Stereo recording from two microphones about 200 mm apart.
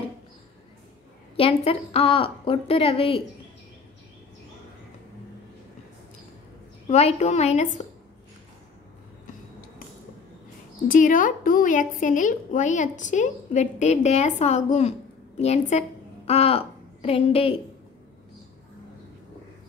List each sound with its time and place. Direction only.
1.3 s a woman's voice: 30° left (ahead or behind)
6.9 s a woman's voice: 35° left (ahead or behind)
10.9 s a woman's voice: 40° left (ahead or behind)